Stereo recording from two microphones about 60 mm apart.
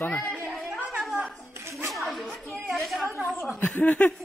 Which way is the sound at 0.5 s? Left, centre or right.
Centre.